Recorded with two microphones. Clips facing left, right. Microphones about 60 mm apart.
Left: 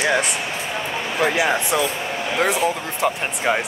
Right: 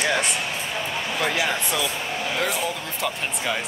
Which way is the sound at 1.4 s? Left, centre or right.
Left.